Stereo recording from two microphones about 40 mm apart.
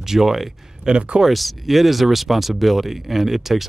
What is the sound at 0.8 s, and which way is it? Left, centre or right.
Speech, right.